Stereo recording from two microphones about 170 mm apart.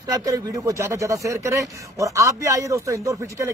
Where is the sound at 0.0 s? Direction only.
20° right (ahead or behind).